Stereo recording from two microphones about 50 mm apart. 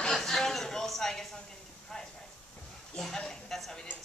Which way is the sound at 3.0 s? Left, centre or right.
Centre.